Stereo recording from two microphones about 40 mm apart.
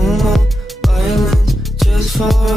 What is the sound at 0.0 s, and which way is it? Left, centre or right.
Music, centre.